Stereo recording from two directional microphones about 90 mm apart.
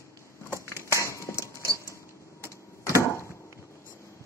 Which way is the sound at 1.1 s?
35° left (ahead or behind).